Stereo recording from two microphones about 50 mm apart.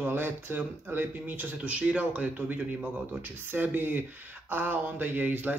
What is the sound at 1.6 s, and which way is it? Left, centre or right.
Speech, right.